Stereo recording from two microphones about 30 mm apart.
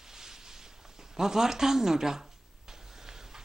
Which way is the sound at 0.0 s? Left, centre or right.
Centre.